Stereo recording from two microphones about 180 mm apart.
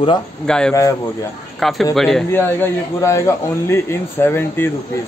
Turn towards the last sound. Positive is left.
turn(degrees=10)  # may be behind; listen again after turning